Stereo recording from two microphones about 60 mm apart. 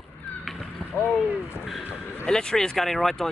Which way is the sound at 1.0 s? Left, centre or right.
Left.